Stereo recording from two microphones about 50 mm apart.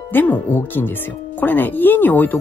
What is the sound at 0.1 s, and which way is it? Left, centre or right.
Speech, left.